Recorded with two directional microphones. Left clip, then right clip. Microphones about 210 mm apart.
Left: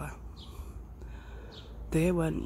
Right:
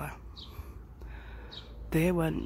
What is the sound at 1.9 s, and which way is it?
Speech, 10° right (ahead or behind).